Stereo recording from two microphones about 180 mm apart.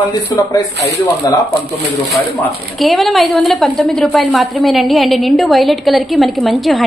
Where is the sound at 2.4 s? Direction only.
Centre (ahead or behind).